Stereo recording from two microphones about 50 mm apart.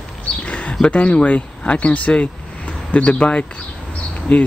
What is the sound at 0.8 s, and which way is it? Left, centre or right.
Speech, left.